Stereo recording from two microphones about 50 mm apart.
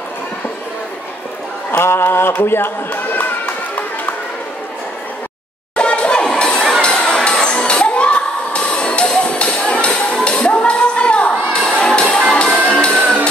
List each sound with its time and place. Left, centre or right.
1.7 s speech: left
5.8 s a sound: left
6.2 s children shouting: centre
9.1 s music: centre